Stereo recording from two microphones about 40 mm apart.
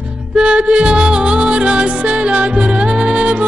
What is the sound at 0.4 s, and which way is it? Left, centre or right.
Music, right.